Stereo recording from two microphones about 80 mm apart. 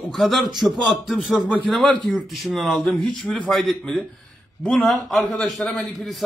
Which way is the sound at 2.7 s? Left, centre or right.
Centre.